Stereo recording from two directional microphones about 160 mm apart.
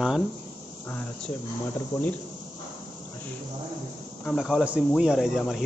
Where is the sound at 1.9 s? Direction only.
15° left (ahead or behind).